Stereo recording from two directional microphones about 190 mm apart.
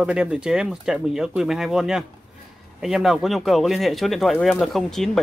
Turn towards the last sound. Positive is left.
turn(degrees=0)  # may be behind; listen again after turning